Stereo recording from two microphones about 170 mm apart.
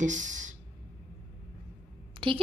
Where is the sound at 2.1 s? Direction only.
30° right (ahead or behind).